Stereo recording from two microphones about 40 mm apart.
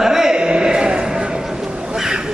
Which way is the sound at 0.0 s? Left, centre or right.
Centre.